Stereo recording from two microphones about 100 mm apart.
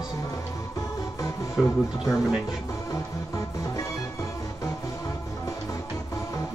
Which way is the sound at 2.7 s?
35° left (ahead or behind).